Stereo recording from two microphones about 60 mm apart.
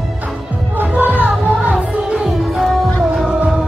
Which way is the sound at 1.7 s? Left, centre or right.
Centre.